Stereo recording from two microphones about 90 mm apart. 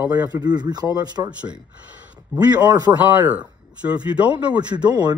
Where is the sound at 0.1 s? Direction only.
45° right (ahead or behind).